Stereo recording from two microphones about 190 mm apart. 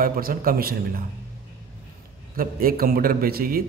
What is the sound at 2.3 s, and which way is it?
Speech, 50° right (ahead or behind).